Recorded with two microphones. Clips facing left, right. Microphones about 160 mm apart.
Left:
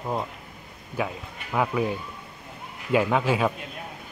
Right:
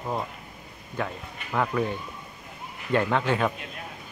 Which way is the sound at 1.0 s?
10° left (ahead or behind).